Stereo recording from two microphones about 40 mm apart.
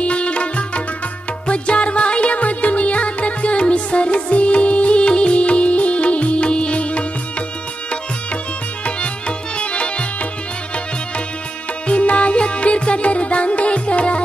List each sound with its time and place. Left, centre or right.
0.0 s sitar: left
1.5 s music: left
9.6 s music: left
11.9 s music: left